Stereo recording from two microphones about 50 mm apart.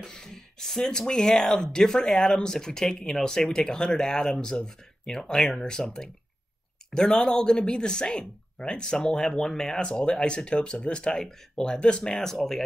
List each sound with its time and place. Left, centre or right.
0.0 s speech: centre
6.9 s speech: centre